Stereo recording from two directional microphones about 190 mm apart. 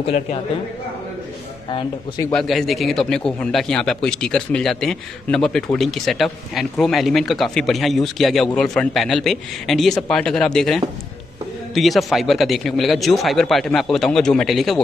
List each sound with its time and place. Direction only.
0.0 s a man's voice: 35° left (ahead or behind)
1.7 s speech: 25° left (ahead or behind)
2.3 s a man's voice: centre (ahead or behind)